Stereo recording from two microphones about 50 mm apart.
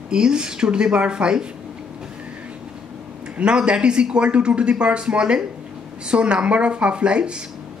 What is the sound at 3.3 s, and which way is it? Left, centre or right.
Speech, centre.